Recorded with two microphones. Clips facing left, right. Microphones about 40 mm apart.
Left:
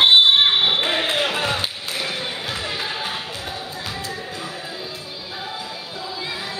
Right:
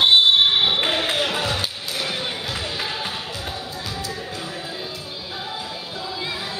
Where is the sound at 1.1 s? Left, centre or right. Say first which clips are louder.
Left 1 dB; centre.